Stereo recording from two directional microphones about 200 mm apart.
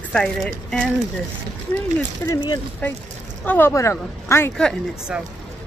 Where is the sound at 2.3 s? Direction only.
15° left (ahead or behind); by 5.2 s centre (ahead or behind).